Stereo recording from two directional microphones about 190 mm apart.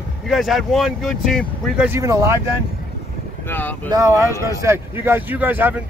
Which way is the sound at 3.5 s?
10° left (ahead or behind).